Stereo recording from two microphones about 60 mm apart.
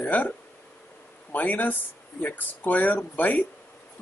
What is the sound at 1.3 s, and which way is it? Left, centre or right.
Speech, left.